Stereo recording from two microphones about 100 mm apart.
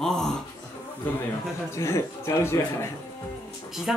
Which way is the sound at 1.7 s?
30° left (ahead or behind).